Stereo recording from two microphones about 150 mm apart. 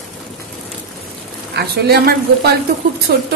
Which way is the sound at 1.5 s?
90° right.